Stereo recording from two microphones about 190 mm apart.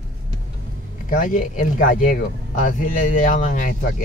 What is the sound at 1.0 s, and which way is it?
Speech, 45° left (ahead or behind).